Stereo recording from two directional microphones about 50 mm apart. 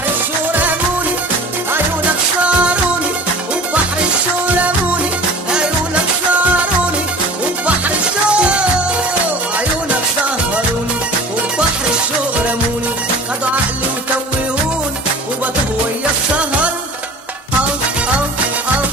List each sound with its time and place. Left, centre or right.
0.5 s music: right
8.3 s music: right